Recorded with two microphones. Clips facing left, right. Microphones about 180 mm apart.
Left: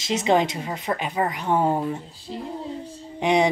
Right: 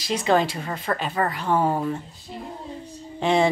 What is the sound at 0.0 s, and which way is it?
A woman's voice, 20° left (ahead or behind).